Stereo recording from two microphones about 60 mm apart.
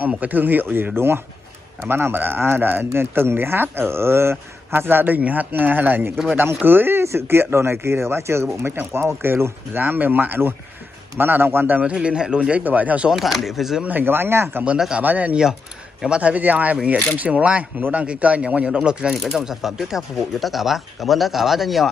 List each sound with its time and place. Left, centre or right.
0.2 s speech: right
11.8 s speech: centre
13.1 s speech: centre
13.8 s speech: right
15.0 s speech: right
16.7 s speech: centre
17.2 s speech: right
19.2 s speech: centre